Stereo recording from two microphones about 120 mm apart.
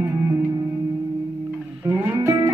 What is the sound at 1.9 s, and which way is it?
Music, 20° right (ahead or behind).